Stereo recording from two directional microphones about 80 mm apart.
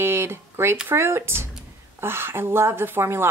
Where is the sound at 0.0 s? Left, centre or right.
Right.